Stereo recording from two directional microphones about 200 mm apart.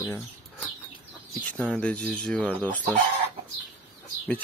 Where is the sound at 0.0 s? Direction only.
10° left (ahead or behind).